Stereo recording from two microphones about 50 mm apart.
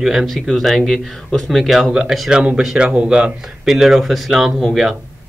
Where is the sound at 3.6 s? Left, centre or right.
Centre.